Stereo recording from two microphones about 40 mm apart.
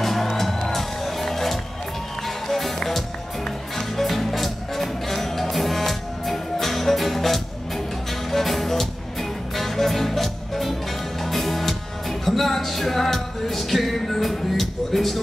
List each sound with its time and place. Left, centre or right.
0.0 s music: centre